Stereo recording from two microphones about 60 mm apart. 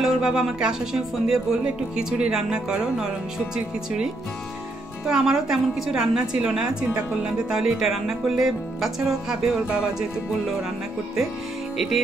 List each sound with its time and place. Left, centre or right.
0.0 s a woman's voice: centre
11.7 s music: centre